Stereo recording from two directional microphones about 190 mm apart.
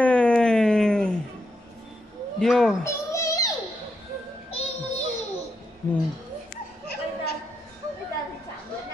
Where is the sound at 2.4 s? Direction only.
Centre (ahead or behind).